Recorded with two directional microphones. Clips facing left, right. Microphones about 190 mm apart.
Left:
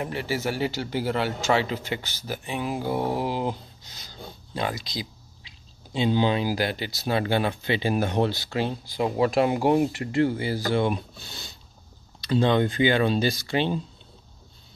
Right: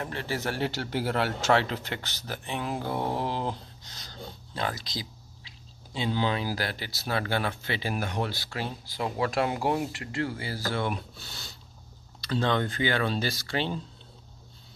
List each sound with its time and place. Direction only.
0.0 s speech: 10° left (ahead or behind)